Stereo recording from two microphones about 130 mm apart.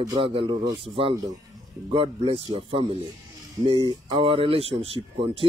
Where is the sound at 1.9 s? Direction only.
45° right (ahead or behind).